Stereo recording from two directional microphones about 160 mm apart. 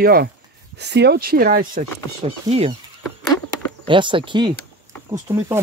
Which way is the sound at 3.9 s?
30° right (ahead or behind).